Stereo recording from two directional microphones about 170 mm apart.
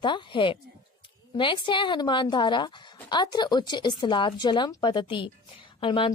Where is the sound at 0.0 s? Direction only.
30° left (ahead or behind).